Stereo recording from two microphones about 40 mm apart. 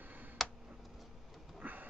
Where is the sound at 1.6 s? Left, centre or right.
Right.